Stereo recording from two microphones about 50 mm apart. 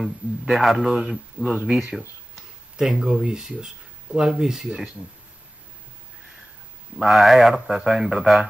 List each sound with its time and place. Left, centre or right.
0.0 s speech: centre
1.4 s speech: right
2.8 s speech: centre
7.0 s speech: centre